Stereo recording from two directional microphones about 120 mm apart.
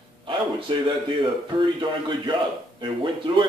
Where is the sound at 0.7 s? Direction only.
40° right (ahead or behind).